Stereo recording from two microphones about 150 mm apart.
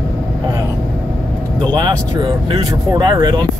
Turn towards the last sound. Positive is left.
turn(degrees=-30)  # may be behind; listen again after turning